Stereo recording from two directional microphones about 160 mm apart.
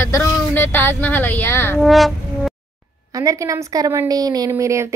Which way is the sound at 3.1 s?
20° right (ahead or behind).